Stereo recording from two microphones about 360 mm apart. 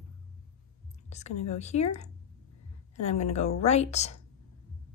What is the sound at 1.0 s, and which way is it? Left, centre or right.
Whispering, centre.